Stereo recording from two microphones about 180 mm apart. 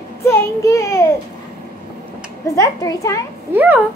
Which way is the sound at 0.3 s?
15° left (ahead or behind).